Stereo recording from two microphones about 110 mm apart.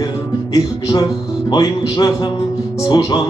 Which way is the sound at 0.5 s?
30° left (ahead or behind).